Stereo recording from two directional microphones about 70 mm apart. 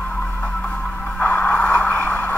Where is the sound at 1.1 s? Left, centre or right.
Left.